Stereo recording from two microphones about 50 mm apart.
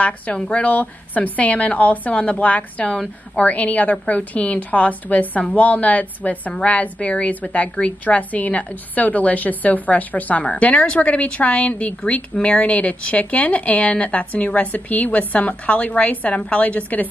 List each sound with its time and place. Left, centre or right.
0.5 s a woman's voice: left